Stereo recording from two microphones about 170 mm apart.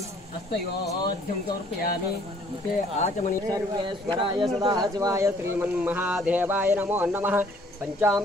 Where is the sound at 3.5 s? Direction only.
30° right (ahead or behind).